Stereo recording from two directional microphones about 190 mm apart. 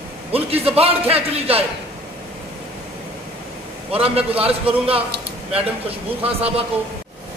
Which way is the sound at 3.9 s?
30° right (ahead or behind).